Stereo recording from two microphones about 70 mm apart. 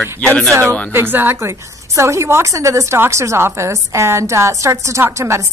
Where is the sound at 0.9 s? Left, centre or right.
Right.